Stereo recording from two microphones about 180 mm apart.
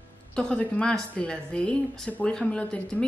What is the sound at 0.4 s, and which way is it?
Speech, 5° left (ahead or behind).